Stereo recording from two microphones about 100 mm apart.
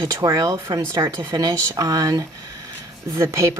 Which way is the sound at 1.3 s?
45° right (ahead or behind).